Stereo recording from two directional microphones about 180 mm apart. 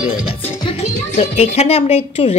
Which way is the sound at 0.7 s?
35° left (ahead or behind).